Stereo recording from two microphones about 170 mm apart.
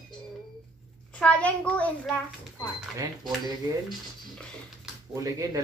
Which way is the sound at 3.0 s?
25° right (ahead or behind).